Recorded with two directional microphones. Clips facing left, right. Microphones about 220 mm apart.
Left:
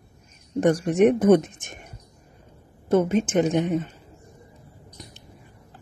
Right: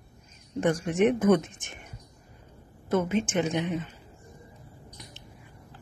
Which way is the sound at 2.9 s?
35° left (ahead or behind).